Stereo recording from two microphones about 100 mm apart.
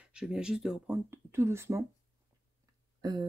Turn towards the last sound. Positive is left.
turn(degrees=-45)  # may be behind; listen again after turning